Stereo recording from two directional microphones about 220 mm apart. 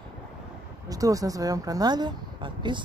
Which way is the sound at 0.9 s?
15° right (ahead or behind).